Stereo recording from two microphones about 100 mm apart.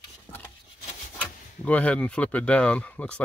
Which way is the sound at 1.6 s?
15° left (ahead or behind).